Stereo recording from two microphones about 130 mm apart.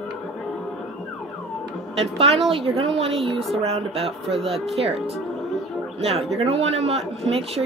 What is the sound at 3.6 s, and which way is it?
Speech, 50° right (ahead or behind).